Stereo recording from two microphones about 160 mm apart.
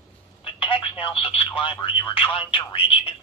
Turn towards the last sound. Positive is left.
turn(degrees=35)  # may be behind; listen again after turning